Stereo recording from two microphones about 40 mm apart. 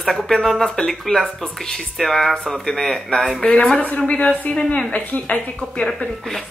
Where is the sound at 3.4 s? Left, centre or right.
Left.